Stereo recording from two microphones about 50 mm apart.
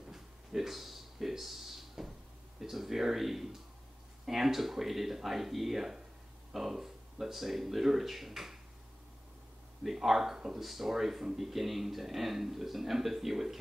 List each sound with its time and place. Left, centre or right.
0.1 s a sound: centre
2.6 s speech: centre
9.8 s speech: centre